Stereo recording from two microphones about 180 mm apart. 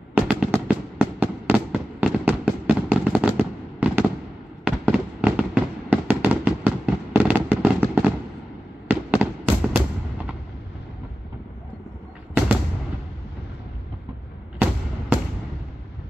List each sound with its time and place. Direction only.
0.1 s fireworks: 5° right (ahead or behind)